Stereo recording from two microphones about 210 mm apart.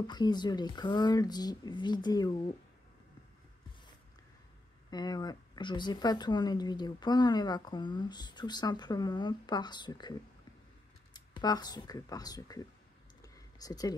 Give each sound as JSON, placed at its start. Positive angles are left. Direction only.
{"t": 0.0, "sound": "speech", "side_deg": 20}
{"t": 4.9, "sound": "speech", "side_deg": 20}
{"t": 11.1, "sound": "speech", "side_deg": 20}
{"t": 13.2, "sound": "a sound", "side_deg": 15}